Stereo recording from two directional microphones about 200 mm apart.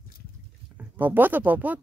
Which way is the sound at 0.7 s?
10° right (ahead or behind).